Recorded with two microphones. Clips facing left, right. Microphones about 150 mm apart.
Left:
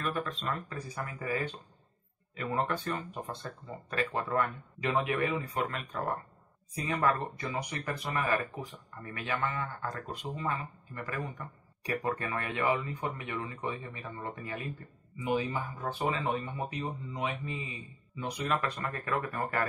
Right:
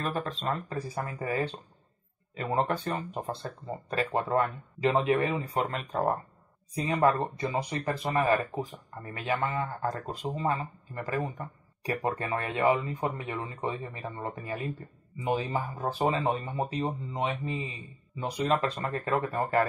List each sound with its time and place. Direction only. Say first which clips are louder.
0.0 s speech: right 3 dB; 35° right (ahead or behind)
6.8 s a man's voice: right 5 dB; 30° right (ahead or behind)